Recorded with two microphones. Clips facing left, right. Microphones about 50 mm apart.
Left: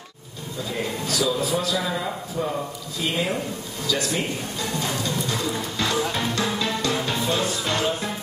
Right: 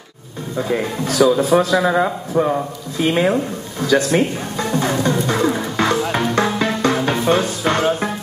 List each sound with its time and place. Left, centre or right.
0.6 s speech: right
1.8 s a man's voice: right
3.0 s speech: right
3.8 s music: right